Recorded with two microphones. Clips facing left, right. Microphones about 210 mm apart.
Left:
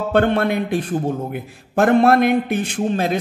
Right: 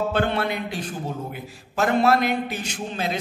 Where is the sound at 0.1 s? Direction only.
50° left (ahead or behind).